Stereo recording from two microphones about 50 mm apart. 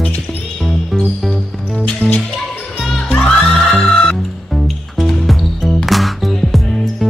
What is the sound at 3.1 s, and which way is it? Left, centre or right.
Music, centre.